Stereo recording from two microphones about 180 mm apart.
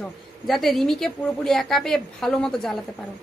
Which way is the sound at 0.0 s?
Centre (ahead or behind).